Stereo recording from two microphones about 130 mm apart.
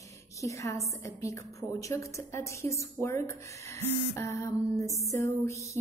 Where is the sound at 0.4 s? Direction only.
25° left (ahead or behind).